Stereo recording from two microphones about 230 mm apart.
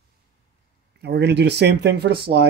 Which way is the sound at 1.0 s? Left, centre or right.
Right.